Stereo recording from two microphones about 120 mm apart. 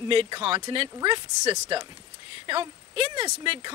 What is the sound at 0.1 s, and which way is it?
Speech, 50° right (ahead or behind).